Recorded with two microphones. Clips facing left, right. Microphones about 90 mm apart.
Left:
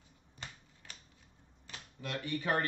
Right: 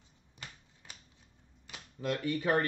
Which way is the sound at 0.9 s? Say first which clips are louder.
Right 1 dB; 20° right (ahead or behind).